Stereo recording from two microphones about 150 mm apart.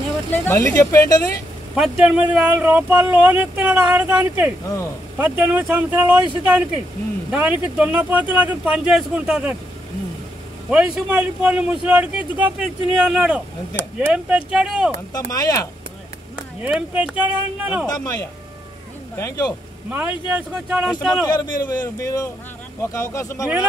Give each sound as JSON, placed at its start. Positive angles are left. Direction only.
{"t": 0.5, "sound": "a man's voice", "side_deg": 20}
{"t": 1.8, "sound": "speech", "side_deg": -5}
{"t": 4.6, "sound": "a man's voice", "side_deg": 20}
{"t": 5.1, "sound": "speech", "side_deg": -10}
{"t": 10.7, "sound": "speech", "side_deg": -10}
{"t": 15.1, "sound": "a man's voice", "side_deg": 25}
{"t": 16.6, "sound": "speech", "side_deg": -5}
{"t": 17.8, "sound": "a man's voice", "side_deg": 25}
{"t": 19.1, "sound": "speech", "side_deg": 20}
{"t": 19.9, "sound": "speech", "side_deg": -10}
{"t": 21.3, "sound": "a man's voice", "side_deg": 25}